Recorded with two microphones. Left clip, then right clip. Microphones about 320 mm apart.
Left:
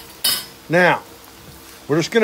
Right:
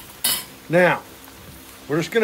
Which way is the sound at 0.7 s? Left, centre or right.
Left.